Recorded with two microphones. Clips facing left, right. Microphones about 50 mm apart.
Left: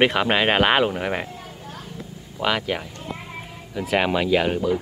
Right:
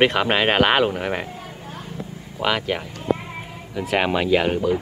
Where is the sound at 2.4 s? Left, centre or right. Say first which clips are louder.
Right 1 dB; centre.